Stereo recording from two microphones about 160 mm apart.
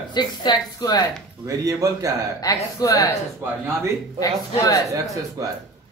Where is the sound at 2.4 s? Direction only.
20° left (ahead or behind).